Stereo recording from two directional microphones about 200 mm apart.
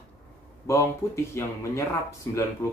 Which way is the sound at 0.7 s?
15° left (ahead or behind).